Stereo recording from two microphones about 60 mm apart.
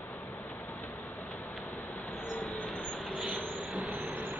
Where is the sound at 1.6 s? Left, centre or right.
Left.